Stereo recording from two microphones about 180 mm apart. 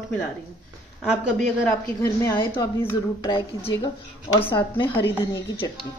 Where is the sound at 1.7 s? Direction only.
15° left (ahead or behind).